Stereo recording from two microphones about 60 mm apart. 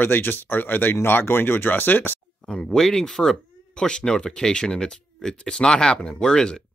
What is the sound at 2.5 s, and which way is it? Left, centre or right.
Speech, centre.